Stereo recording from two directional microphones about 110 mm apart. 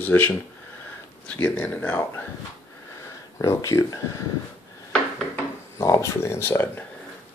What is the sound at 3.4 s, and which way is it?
Speech, 30° left (ahead or behind).